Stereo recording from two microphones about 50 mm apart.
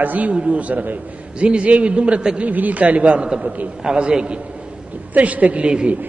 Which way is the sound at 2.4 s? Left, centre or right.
Right.